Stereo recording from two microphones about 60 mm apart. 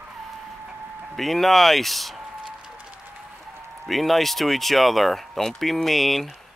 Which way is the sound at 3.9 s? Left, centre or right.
Centre.